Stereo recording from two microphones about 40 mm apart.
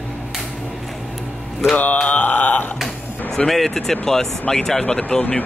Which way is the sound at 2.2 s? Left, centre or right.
Left.